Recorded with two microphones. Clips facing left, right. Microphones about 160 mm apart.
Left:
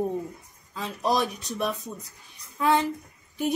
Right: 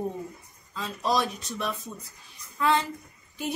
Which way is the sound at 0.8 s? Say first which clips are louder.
Left 1 dB; 15° left (ahead or behind).